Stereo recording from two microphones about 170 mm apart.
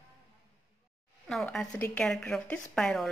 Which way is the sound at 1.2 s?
5° left (ahead or behind).